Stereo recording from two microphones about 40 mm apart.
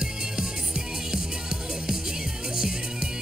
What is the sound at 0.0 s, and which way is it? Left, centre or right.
Music, centre.